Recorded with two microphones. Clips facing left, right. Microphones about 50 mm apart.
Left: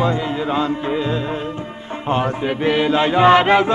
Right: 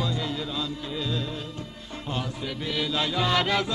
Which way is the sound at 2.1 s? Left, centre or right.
Left.